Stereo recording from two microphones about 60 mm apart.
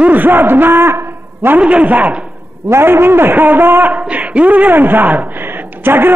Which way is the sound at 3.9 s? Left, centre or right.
Right.